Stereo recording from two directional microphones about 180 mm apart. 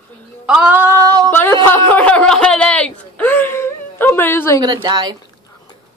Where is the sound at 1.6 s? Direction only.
10° left (ahead or behind).